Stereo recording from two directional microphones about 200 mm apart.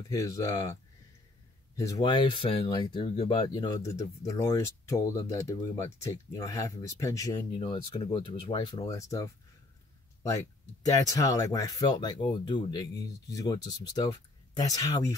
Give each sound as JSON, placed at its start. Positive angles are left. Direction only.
{"t": 0.1, "sound": "speech", "side_deg": 15}
{"t": 1.8, "sound": "speech", "side_deg": 15}